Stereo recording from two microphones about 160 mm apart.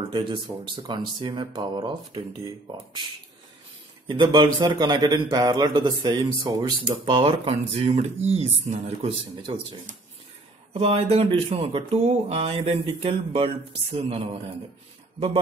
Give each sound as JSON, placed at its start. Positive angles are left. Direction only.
{"t": 0.1, "sound": "a man's voice", "side_deg": -30}
{"t": 4.1, "sound": "a man's voice", "side_deg": -30}